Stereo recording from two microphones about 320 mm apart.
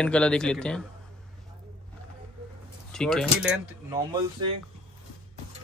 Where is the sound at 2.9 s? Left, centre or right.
Centre.